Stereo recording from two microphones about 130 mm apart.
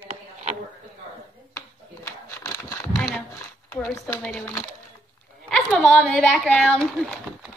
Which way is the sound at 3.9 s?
20° left (ahead or behind).